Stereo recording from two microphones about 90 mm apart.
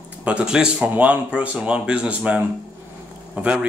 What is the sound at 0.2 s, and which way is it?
Speech, 15° right (ahead or behind).